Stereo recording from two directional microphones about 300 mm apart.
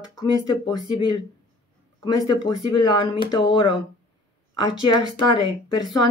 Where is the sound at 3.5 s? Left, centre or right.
Left.